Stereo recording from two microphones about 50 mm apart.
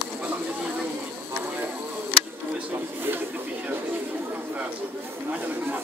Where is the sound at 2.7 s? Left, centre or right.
Right.